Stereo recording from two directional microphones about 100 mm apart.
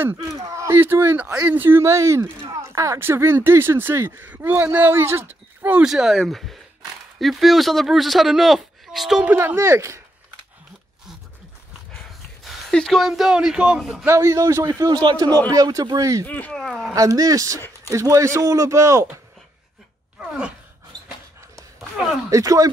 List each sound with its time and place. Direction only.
0.4 s speech: 30° right (ahead or behind)
1.3 s speech: 15° right (ahead or behind)
5.9 s speech: 5° right (ahead or behind)
9.2 s speech: 15° right (ahead or behind)
9.6 s speech: 30° right (ahead or behind)
12.4 s speech: 5° left (ahead or behind)
14.0 s a man's voice: 30° right (ahead or behind)
16.3 s speech: 15° left (ahead or behind)
16.5 s speech: centre (ahead or behind)
16.9 s a man's voice: 35° right (ahead or behind)
20.2 s a sound: 10° right (ahead or behind)
22.3 s a man's voice: 35° right (ahead or behind)